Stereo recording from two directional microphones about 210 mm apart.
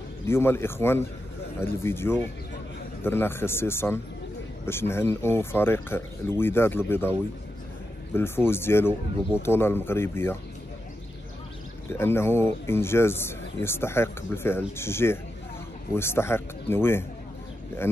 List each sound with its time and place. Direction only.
0.3 s speech: 10° left (ahead or behind)
11.9 s speech: 10° left (ahead or behind)